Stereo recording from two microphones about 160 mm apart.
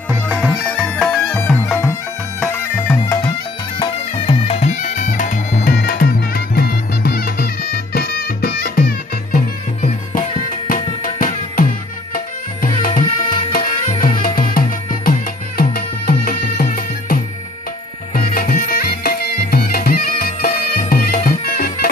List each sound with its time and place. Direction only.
0.1 s music: 10° right (ahead or behind)
0.5 s bagpipes: 10° left (ahead or behind)
3.8 s music: 35° left (ahead or behind); by 11.6 s 55° left (ahead or behind)
12.6 s music: 55° left (ahead or behind)